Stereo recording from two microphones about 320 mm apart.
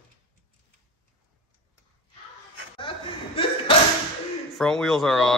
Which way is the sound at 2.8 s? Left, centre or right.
Centre.